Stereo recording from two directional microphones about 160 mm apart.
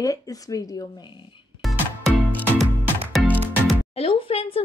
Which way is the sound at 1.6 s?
Centre (ahead or behind).